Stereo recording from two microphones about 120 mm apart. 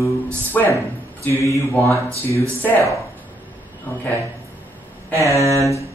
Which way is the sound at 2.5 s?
15° left (ahead or behind).